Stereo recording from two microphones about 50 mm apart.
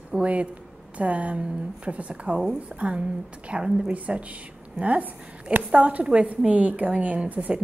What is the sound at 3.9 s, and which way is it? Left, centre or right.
A woman's voice, right.